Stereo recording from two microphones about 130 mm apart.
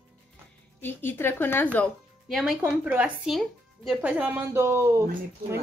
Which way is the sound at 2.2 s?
5° right (ahead or behind).